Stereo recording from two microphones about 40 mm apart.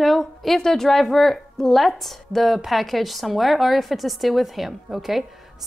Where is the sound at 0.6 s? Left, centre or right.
Centre.